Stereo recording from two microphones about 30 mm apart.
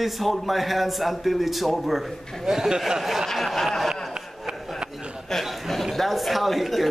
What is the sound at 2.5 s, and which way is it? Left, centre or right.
Speech, centre.